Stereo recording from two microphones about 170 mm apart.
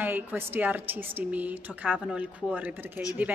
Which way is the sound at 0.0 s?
10° right (ahead or behind).